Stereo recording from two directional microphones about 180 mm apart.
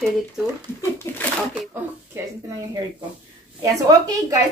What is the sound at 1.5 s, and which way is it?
Speech, 10° right (ahead or behind).